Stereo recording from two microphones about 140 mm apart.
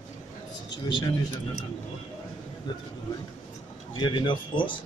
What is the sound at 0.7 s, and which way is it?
Speech, 35° left (ahead or behind).